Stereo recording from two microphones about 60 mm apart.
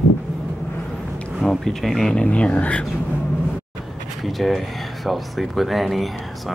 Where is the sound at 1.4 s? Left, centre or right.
Centre.